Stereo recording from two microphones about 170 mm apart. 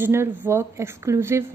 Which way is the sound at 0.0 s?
15° right (ahead or behind).